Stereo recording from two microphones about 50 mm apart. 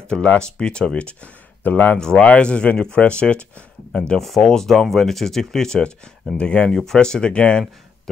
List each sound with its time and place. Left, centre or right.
0.4 s speech: centre
1.6 s speech: left
2.0 s speech: centre
4.2 s speech: centre; by 6.7 s left
6.7 s speech: centre